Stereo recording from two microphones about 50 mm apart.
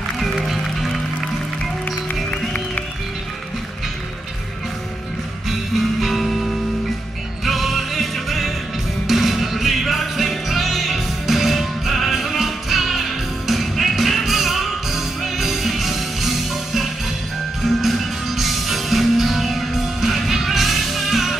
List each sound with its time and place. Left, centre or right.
0.2 s music: centre
2.3 s music: left
5.5 s music: centre